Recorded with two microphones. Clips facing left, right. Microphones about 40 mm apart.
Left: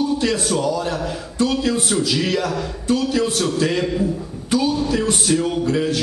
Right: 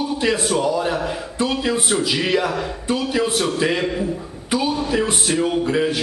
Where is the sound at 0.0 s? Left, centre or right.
Centre.